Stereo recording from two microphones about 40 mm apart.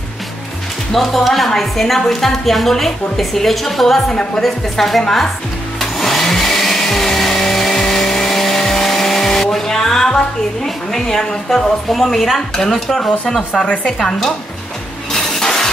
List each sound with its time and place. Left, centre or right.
0.9 s a woman's voice: centre
5.8 s vehicle: centre
11.9 s a woman's voice: centre
13.5 s speech: left
15.1 s shatter: centre